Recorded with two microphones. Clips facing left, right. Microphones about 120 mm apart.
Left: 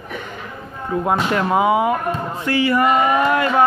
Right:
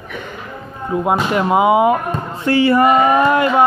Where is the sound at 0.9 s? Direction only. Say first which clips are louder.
Right 2 dB; 15° right (ahead or behind).